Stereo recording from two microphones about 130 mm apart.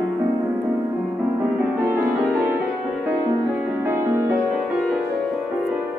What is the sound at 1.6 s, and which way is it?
Music, 10° right (ahead or behind).